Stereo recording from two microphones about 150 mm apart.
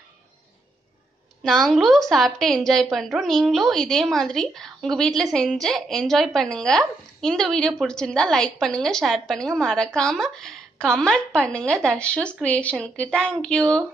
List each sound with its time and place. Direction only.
1.4 s a woman's voice: 5° left (ahead or behind)